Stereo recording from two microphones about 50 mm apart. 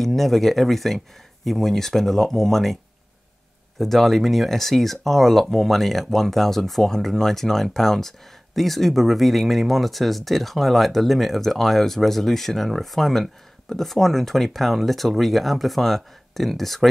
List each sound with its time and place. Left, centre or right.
0.0 s speech: centre